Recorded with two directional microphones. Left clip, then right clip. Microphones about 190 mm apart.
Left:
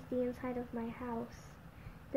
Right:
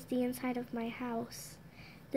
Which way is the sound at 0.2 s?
55° right (ahead or behind).